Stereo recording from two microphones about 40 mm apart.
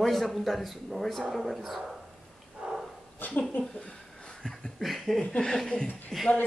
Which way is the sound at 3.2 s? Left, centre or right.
Left.